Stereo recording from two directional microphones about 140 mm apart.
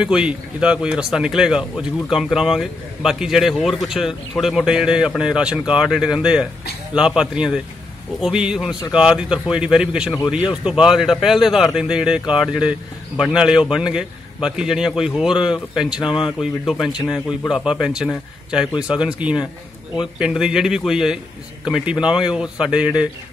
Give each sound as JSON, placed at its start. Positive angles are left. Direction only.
{"t": 0.0, "sound": "speech", "side_deg": -5}
{"t": 17.5, "sound": "speech", "side_deg": 0}